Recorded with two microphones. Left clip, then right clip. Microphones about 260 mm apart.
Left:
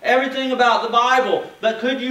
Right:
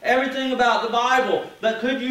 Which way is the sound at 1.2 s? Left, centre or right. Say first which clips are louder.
Left 2 dB; left.